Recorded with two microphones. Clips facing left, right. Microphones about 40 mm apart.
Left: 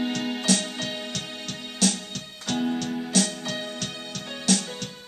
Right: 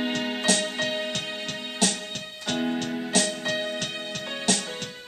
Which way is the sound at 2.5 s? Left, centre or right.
Centre.